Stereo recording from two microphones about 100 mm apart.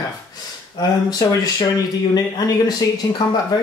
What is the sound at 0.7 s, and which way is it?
Speech, 40° left (ahead or behind).